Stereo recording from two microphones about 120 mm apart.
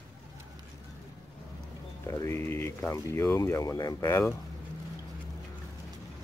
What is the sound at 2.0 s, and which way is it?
Speech, 25° left (ahead or behind).